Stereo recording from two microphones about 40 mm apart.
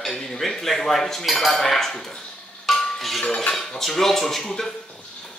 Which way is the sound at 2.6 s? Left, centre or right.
Centre.